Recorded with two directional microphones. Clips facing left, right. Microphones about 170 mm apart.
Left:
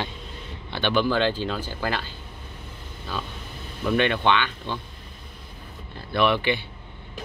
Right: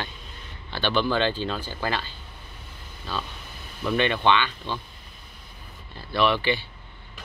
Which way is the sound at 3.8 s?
5° left (ahead or behind).